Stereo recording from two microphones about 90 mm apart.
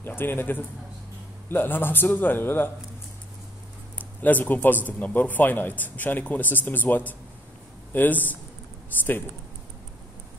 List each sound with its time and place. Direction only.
0.0 s a man's voice: 25° left (ahead or behind)
4.2 s a man's voice: 20° left (ahead or behind)